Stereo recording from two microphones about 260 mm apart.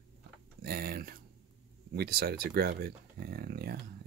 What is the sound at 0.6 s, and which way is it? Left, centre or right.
Speech, right.